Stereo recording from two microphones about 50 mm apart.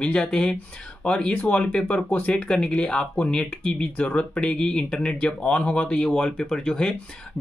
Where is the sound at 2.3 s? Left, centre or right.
Centre.